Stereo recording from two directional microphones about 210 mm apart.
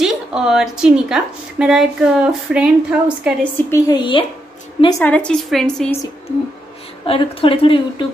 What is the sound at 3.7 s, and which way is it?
Speech, 20° left (ahead or behind).